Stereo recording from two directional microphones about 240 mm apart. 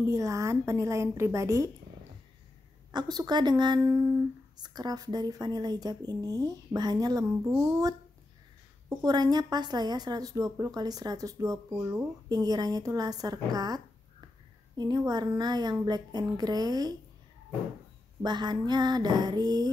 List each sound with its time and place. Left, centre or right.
0.1 s a woman's voice: centre
2.9 s a woman's voice: centre
14.8 s a woman's voice: centre
18.2 s a woman's voice: centre